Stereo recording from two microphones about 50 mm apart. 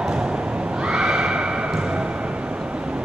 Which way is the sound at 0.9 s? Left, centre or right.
Centre.